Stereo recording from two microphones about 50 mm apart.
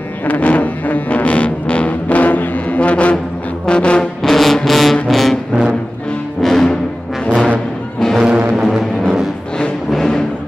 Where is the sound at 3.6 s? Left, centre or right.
Left.